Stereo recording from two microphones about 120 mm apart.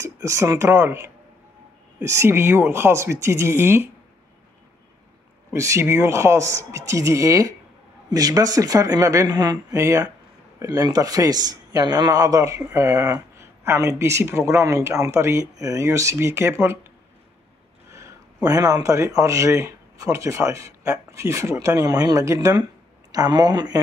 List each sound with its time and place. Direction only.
0.0 s a man's voice: 25° right (ahead or behind)
5.5 s a man's voice: 25° right (ahead or behind)
17.9 s speech: 30° right (ahead or behind)